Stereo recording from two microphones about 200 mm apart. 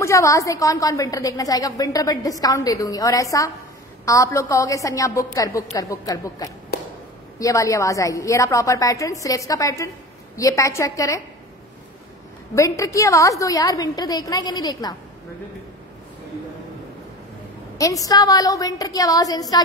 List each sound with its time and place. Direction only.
0.0 s a woman's voice: 15° left (ahead or behind)
12.5 s a woman's voice: 15° left (ahead or behind)
17.7 s a woman's voice: 15° left (ahead or behind)